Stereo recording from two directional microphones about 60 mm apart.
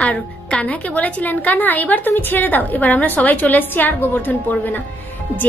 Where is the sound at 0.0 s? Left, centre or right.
Centre.